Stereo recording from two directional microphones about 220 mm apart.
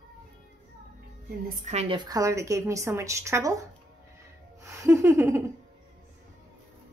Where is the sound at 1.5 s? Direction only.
30° right (ahead or behind); by 3.5 s 15° right (ahead or behind).